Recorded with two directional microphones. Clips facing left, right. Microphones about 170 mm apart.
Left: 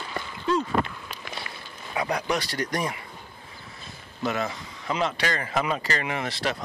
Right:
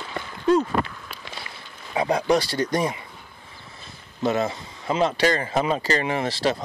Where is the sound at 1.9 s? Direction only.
25° right (ahead or behind).